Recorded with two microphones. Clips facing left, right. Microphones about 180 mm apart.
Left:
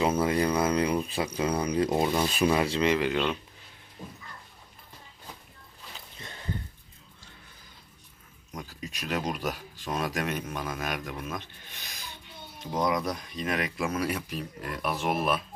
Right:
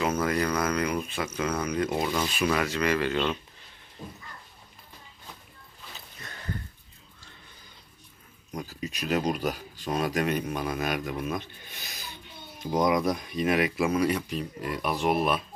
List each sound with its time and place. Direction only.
0.2 s speech: 25° left (ahead or behind)
8.5 s speech: centre (ahead or behind)